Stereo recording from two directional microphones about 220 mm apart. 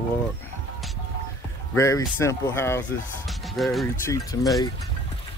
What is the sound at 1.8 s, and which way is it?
Speech, 15° left (ahead or behind).